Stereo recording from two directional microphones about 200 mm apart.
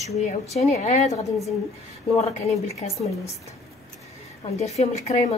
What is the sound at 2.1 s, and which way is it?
Speech, 30° left (ahead or behind).